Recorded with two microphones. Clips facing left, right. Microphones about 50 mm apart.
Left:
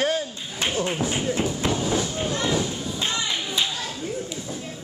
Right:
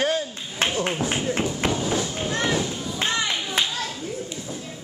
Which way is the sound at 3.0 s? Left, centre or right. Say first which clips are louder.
Right 3 dB; right.